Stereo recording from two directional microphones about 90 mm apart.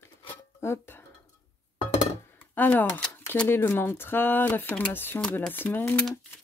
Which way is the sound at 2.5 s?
20° left (ahead or behind).